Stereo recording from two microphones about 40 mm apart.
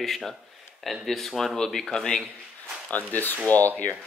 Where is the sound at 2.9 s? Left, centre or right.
Left.